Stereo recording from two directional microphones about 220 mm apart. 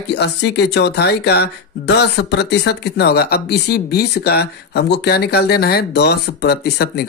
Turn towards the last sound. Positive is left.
turn(degrees=45)  # may be behind; listen again after turning